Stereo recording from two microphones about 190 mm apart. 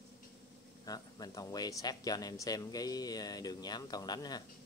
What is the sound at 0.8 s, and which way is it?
Speech, 20° left (ahead or behind).